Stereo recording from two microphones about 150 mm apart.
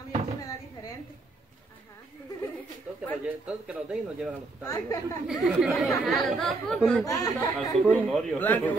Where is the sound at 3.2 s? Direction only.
5° right (ahead or behind).